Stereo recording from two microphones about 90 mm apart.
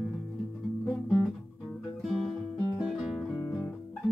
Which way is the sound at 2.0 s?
Centre (ahead or behind).